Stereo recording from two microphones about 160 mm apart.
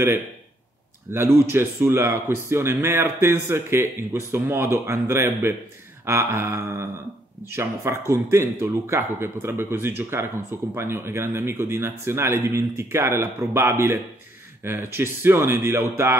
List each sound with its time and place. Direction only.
1.1 s speech: 15° right (ahead or behind)